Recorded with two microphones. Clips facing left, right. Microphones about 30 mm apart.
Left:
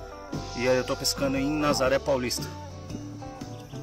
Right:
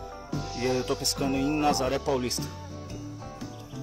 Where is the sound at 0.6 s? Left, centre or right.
Centre.